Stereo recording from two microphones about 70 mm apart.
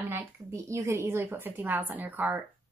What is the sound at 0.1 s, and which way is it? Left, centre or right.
A woman's voice, right.